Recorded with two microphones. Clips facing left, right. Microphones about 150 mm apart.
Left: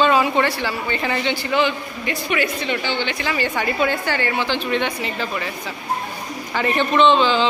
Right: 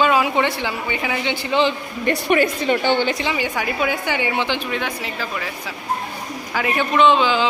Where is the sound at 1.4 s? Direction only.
25° right (ahead or behind).